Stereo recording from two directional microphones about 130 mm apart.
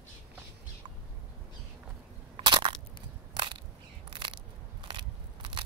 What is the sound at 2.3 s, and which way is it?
Crushing, 40° right (ahead or behind).